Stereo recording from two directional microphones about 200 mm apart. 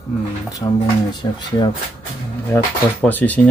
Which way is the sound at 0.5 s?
15° left (ahead or behind).